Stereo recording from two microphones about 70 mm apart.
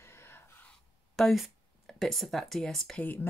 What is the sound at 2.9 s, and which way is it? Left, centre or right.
Speech, left.